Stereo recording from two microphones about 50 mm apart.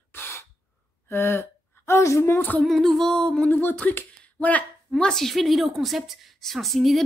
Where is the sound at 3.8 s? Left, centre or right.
Left.